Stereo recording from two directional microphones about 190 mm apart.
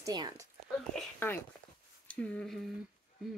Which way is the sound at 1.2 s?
10° left (ahead or behind).